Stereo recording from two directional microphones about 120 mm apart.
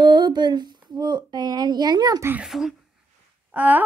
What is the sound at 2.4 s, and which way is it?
Speech, 5° right (ahead or behind).